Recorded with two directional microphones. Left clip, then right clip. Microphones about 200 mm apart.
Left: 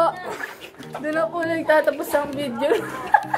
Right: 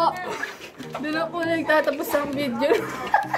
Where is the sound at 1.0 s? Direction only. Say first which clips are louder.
Left 3 dB; 25° right (ahead or behind).